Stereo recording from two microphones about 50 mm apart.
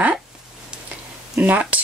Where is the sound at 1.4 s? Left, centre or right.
Right.